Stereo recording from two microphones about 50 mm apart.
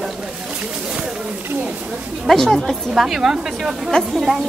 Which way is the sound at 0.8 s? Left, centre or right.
Centre.